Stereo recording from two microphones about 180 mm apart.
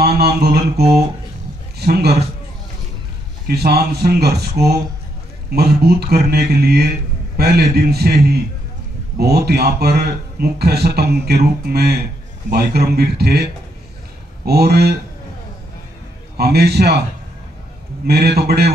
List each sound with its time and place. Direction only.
0.0 s mantra: 60° right (ahead or behind)
1.8 s a man's voice: 65° right (ahead or behind)
3.4 s a man's voice: 60° right (ahead or behind)
4.6 s speech: 15° right (ahead or behind)
5.5 s a man's voice: 60° right (ahead or behind)
9.2 s a man's voice: 65° right (ahead or behind)
16.3 s a man's voice: 65° right (ahead or behind)
18.0 s a man's voice: 60° right (ahead or behind)